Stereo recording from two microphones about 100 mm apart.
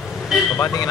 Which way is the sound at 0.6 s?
30° left (ahead or behind).